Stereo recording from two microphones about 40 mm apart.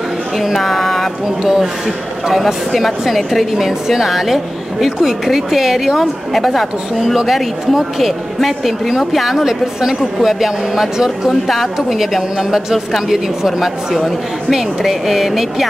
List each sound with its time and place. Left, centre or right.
0.4 s a sound: centre
1.4 s a woman's voice: centre
9.5 s a woman's voice: centre